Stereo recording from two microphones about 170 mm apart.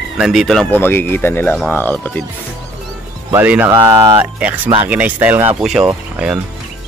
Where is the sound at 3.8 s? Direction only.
20° right (ahead or behind).